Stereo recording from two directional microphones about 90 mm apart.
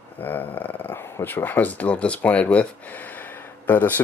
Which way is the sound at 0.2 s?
20° left (ahead or behind).